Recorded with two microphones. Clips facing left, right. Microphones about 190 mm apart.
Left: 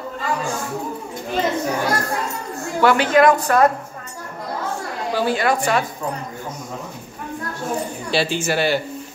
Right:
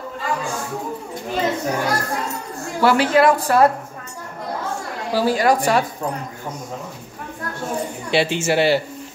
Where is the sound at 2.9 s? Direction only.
30° right (ahead or behind).